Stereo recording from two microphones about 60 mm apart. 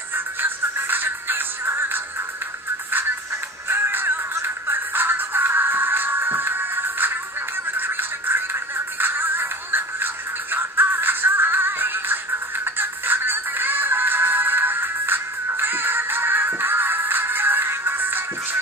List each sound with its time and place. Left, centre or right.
0.1 s music: right
3.6 s music: right